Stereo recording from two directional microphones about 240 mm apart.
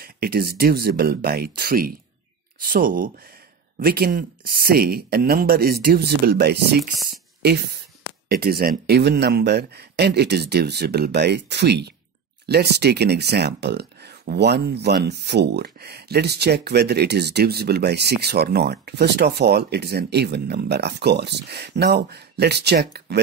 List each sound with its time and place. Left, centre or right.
0.0 s speech: right
8.3 s speech: right